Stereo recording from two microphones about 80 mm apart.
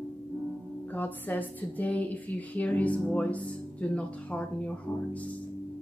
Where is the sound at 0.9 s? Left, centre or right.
Left.